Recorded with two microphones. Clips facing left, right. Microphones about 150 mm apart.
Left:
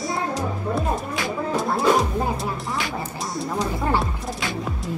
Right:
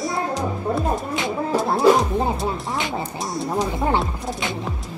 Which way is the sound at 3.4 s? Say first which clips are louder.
Right 2 dB; 20° right (ahead or behind).